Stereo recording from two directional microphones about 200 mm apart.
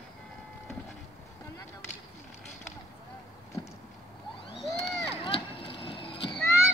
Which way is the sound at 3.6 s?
25° left (ahead or behind).